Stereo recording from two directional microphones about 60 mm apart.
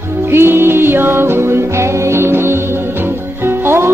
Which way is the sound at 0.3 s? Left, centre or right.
Right.